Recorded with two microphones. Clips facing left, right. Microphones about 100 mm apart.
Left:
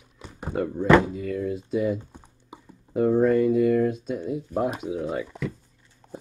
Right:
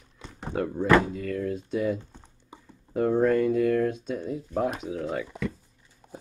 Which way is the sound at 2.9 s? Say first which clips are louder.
Left 2 dB; 5° left (ahead or behind).